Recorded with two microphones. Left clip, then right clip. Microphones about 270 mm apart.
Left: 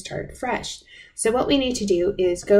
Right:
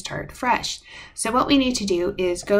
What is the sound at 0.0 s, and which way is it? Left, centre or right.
Speech, right.